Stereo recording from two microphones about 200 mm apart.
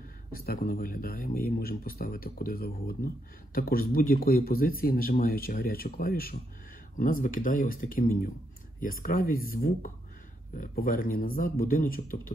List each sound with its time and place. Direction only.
0.3 s speech: 45° left (ahead or behind)